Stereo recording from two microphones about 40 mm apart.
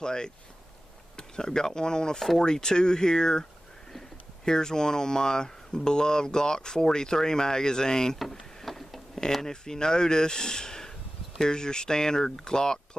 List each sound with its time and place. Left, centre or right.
0.0 s speech: centre
4.5 s speech: centre
8.2 s a sound: centre
9.3 s speech: centre